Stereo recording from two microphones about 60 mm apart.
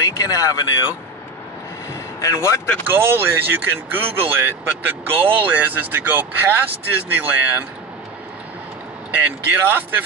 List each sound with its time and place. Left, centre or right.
0.0 s speech: left
2.2 s speech: left
2.9 s speech: right
9.1 s speech: right